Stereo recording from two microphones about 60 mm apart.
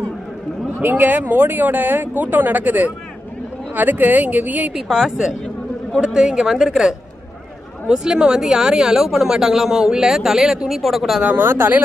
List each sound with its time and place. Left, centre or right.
0.7 s speech: right
4.7 s speech: centre
11.2 s speech: right